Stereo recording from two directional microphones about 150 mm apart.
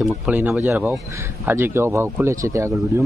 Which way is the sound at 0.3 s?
10° right (ahead or behind).